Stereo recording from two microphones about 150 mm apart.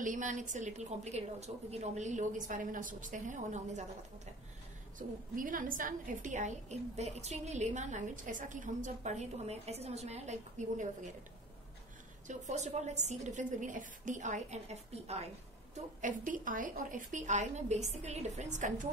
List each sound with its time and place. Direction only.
0.0 s a woman's voice: 60° right (ahead or behind)
4.9 s a woman's voice: 65° right (ahead or behind); by 10.9 s 50° right (ahead or behind)
12.3 s a woman's voice: 50° right (ahead or behind)
16.0 s a woman's voice: 60° right (ahead or behind)